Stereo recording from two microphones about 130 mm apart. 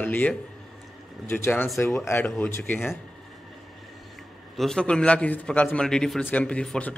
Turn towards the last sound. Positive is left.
turn(degrees=10)  # may be behind; listen again after turning